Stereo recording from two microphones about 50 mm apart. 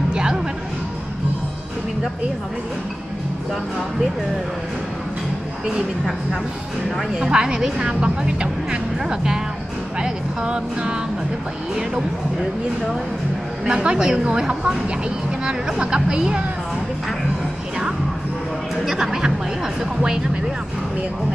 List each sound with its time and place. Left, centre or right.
0.1 s music: centre
7.2 s a woman's voice: centre
13.7 s a woman's voice: centre
18.9 s a sound: centre